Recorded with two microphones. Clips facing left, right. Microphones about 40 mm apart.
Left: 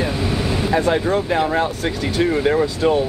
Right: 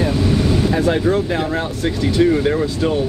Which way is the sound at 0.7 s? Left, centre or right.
Centre.